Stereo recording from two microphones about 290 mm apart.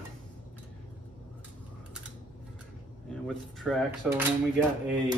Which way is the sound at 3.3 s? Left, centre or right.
Centre.